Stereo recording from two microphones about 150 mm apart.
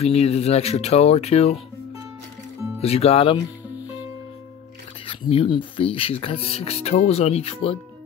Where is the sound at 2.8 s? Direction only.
45° left (ahead or behind).